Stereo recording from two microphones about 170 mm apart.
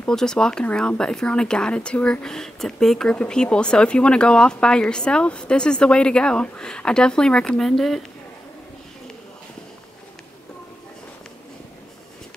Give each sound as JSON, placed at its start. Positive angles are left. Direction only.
{"t": 0.0, "sound": "speech", "side_deg": 5}